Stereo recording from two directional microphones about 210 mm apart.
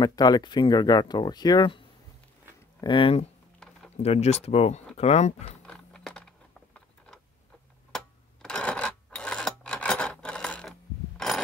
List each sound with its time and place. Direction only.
0.0 s speech: 20° left (ahead or behind)
3.5 s computer keyboard: 5° left (ahead or behind)
3.9 s speech: 30° left (ahead or behind)
5.7 s a sound: 5° left (ahead or behind)